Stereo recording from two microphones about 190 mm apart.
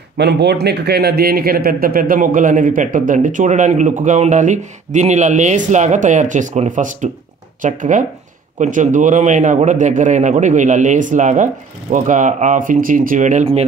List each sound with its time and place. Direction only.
0.2 s a man's voice: 60° right (ahead or behind); by 13.7 s 35° right (ahead or behind)